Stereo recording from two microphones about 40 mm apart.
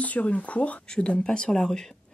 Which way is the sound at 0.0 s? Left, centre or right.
Left.